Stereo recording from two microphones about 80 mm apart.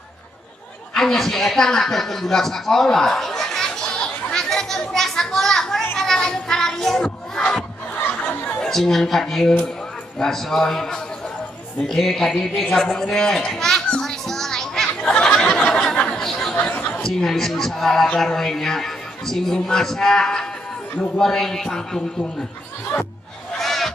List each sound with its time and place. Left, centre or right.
0.9 s a sound: centre
5.9 s child singing: centre
8.0 s chatter: left
8.6 s a man's voice: centre
12.6 s children playing: centre
16.5 s chatter: centre
17.0 s a man's voice: centre
22.9 s speech: centre
23.6 s music: centre